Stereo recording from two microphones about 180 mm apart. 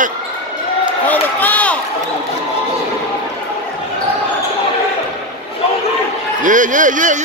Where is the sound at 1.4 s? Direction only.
10° left (ahead or behind).